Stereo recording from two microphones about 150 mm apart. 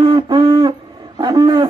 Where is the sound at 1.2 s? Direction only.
25° right (ahead or behind).